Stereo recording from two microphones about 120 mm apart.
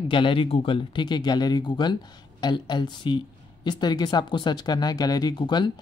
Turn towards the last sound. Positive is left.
turn(degrees=40)  # may be behind; listen again after turning